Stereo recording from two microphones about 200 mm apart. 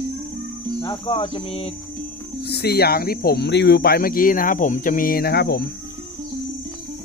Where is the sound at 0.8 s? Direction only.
25° left (ahead or behind).